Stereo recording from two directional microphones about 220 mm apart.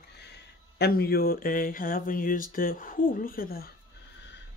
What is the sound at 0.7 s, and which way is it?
Speech, 45° left (ahead or behind).